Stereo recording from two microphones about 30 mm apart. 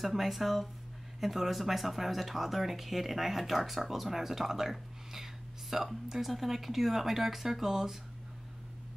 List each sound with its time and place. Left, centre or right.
0.0 s speech: centre
7.6 s speech: centre